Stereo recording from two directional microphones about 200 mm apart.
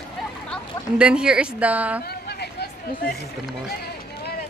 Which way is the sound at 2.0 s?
55° left (ahead or behind).